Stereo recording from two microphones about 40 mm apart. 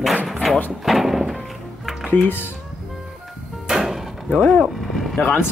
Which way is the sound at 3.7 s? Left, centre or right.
Centre.